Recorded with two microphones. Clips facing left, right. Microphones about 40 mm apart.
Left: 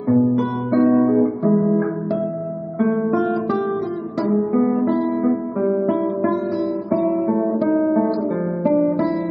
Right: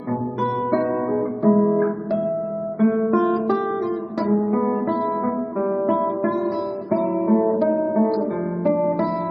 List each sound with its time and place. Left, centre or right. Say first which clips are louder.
0.1 s guitar: left 6 dB; centre
6.9 s guitar: right 1 dB; centre
8.6 s music: left 2 dB; centre